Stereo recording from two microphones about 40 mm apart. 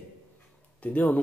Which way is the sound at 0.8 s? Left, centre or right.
Left.